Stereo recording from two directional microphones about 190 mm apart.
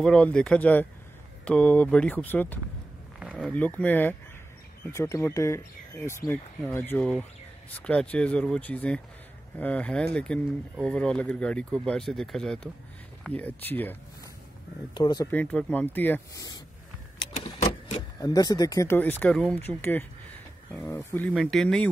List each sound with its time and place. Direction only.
0.0 s speech: 5° left (ahead or behind)
3.2 s speech: 5° right (ahead or behind)
15.0 s speech: 25° left (ahead or behind)
15.3 s speech: 5° left (ahead or behind)
17.6 s printer: 30° left (ahead or behind)
18.2 s speech: 20° left (ahead or behind); by 21.8 s centre (ahead or behind)